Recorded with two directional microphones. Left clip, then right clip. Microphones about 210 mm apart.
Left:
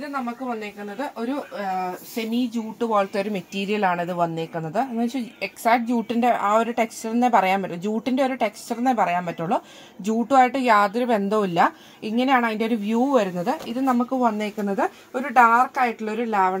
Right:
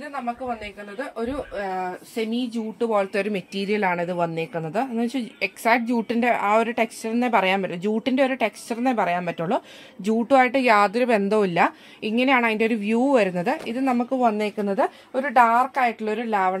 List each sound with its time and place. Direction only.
2.5 s a woman's voice: 15° right (ahead or behind); by 14.5 s 40° right (ahead or behind)
14.6 s a woman's voice: 25° right (ahead or behind)